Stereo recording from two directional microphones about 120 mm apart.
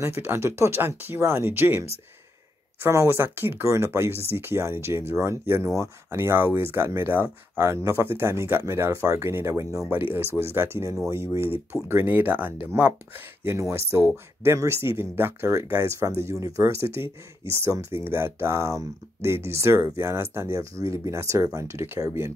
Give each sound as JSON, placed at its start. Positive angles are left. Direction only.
{"t": 0.2, "sound": "speech", "side_deg": -20}